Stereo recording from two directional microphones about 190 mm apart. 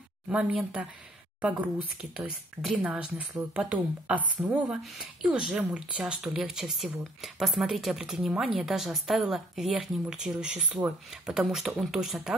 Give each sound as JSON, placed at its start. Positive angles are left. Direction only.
{"t": 0.3, "sound": "speech", "side_deg": -5}